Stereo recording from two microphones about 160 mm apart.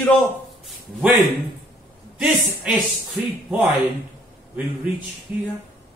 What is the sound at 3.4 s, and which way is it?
Speech, centre (ahead or behind).